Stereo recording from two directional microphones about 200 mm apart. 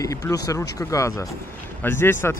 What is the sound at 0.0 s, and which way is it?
Speech, 15° left (ahead or behind).